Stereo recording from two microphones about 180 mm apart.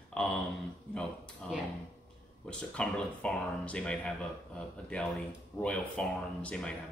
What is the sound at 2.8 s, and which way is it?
Speech, 5° left (ahead or behind).